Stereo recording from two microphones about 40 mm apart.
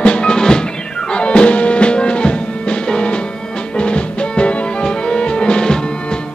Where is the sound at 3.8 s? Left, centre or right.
Left.